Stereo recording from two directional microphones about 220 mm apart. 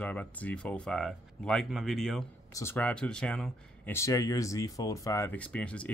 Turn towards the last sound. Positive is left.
turn(degrees=5)  # may be behind; listen again after turning